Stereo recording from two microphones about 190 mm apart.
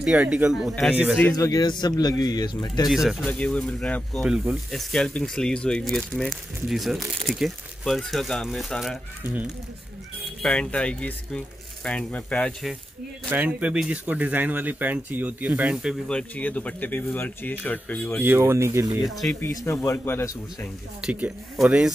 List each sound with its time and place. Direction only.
0.0 s speech: 5° right (ahead or behind)
1.3 s a man's voice: 20° left (ahead or behind)
2.9 s speech: centre (ahead or behind)
13.3 s speech: 10° right (ahead or behind); by 18.2 s 5° left (ahead or behind)
18.2 s speech: 15° right (ahead or behind)
19.4 s speech: 15° left (ahead or behind)
21.0 s speech: 5° right (ahead or behind)